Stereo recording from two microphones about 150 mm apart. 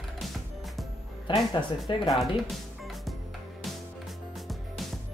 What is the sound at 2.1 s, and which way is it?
Speech, centre (ahead or behind).